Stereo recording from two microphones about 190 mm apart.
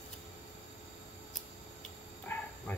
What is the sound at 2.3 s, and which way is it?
Bow-wow, 15° left (ahead or behind).